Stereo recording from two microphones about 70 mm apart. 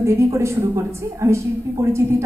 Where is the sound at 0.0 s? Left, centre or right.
Right.